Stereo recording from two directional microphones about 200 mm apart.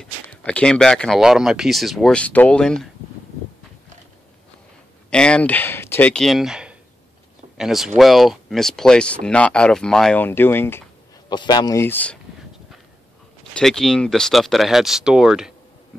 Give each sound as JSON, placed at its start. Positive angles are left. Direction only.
{"t": 0.0, "sound": "speech", "side_deg": 5}
{"t": 5.1, "sound": "speech", "side_deg": 5}
{"t": 13.6, "sound": "speech", "side_deg": 5}